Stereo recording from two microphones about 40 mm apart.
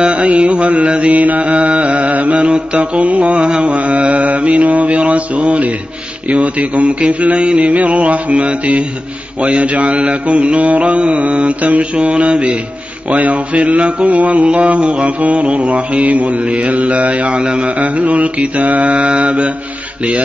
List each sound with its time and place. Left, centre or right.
0.0 s mantra: right
17.7 s mantra: right